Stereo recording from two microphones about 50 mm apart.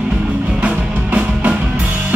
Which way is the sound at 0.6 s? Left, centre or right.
Right.